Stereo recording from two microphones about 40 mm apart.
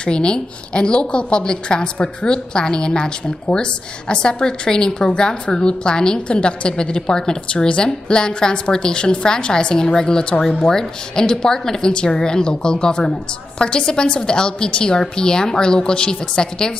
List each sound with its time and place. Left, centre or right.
0.0 s a woman's voice: left